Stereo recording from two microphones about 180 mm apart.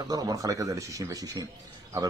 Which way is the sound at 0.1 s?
20° right (ahead or behind).